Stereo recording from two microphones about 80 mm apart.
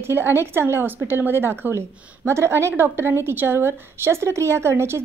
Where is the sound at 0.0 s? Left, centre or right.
Right.